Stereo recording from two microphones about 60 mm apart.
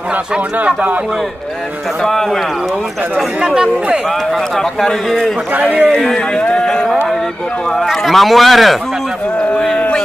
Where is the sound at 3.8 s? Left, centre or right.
Right.